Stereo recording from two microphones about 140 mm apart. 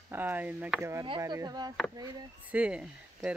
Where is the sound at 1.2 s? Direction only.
25° right (ahead or behind).